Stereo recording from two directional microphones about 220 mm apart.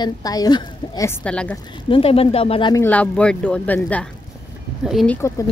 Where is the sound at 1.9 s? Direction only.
25° left (ahead or behind).